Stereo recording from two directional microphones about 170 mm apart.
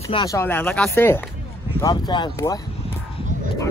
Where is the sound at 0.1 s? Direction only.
20° left (ahead or behind).